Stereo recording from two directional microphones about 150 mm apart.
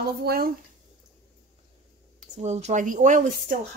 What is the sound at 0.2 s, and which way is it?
Speech, 90° right.